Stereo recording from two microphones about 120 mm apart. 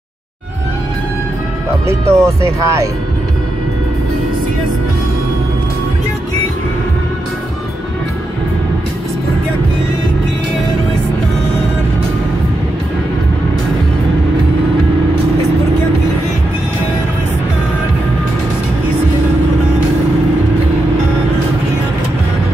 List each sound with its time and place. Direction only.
1.9 s speech: 25° right (ahead or behind)